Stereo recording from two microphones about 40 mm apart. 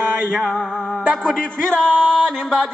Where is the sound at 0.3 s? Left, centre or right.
Centre.